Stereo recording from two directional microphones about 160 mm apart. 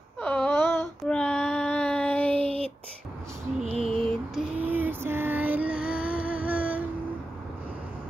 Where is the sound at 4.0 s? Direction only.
Centre (ahead or behind).